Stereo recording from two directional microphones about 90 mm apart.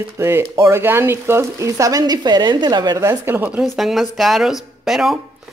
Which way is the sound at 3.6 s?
Centre (ahead or behind).